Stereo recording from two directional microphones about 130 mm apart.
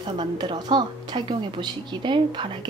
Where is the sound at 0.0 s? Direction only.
35° right (ahead or behind).